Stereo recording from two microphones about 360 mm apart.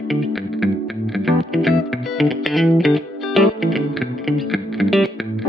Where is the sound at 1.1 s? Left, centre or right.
Centre.